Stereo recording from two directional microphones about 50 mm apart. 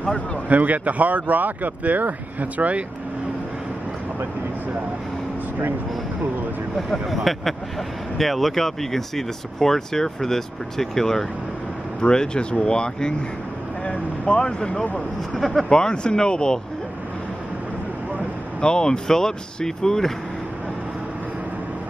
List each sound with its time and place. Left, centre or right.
0.5 s speech: right
7.3 s speech: centre
15.3 s speech: centre
15.7 s speech: centre
18.6 s speech: centre